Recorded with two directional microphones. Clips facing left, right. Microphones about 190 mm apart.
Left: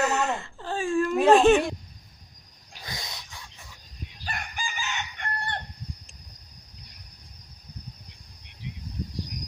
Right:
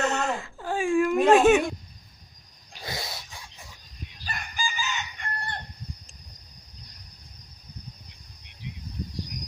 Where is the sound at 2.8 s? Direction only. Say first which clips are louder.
Right 4 dB; 25° right (ahead or behind).